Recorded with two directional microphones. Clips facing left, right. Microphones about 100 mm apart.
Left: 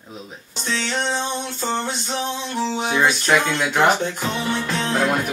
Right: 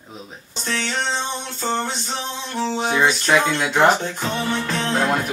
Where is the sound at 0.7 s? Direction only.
20° left (ahead or behind).